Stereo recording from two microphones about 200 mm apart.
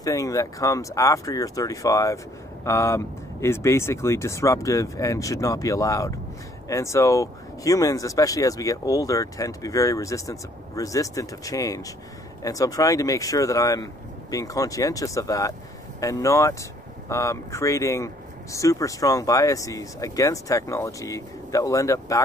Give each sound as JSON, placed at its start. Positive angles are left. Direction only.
{"t": 0.0, "sound": "speech", "side_deg": 15}